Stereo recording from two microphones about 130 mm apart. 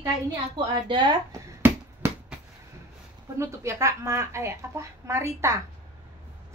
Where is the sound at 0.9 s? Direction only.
35° right (ahead or behind).